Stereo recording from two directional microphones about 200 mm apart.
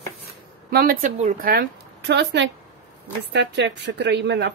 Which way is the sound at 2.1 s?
60° right (ahead or behind).